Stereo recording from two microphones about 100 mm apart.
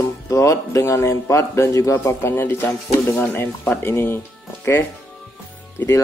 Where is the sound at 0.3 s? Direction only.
35° left (ahead or behind).